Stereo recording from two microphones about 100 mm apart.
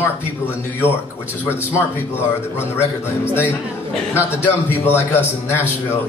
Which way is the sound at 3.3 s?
15° right (ahead or behind).